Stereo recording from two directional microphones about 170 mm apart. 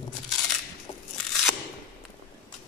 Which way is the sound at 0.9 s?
35° left (ahead or behind).